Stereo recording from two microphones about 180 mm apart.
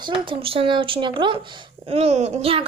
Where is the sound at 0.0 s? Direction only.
25° right (ahead or behind).